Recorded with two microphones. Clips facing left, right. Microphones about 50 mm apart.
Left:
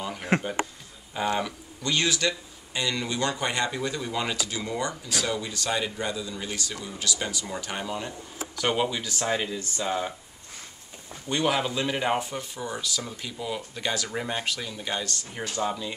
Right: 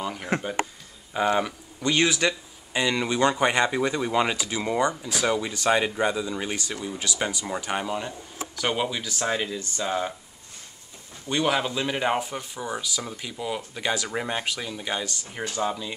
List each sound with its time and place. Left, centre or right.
0.0 s a sound: centre
1.1 s speech: centre
8.5 s speech: centre
11.2 s speech: centre